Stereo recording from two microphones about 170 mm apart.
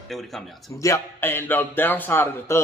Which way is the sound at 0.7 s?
20° left (ahead or behind).